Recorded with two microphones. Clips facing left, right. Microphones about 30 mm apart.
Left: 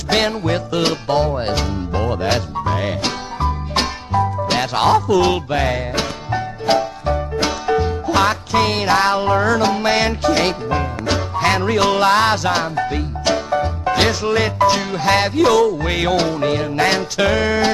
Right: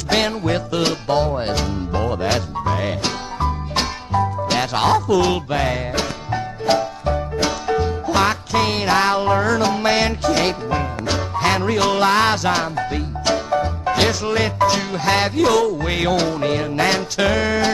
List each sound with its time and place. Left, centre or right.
0.1 s music: centre